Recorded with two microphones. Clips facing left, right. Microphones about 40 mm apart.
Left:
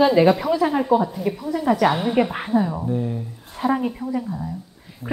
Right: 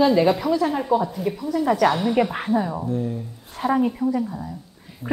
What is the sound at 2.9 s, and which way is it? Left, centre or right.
Speech, centre.